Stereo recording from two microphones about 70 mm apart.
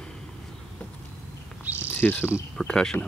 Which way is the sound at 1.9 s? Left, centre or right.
Left.